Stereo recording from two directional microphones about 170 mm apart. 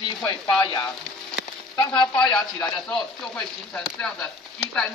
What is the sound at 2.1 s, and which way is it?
Chopping, 5° left (ahead or behind).